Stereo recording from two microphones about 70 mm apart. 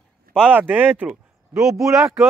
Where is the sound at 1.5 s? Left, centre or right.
Centre.